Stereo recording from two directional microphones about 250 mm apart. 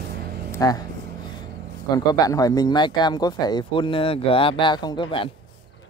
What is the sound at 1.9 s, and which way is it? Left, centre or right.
Speech, centre.